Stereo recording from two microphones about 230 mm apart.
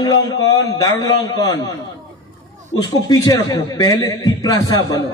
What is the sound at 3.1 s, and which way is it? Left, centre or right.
A man's voice, centre.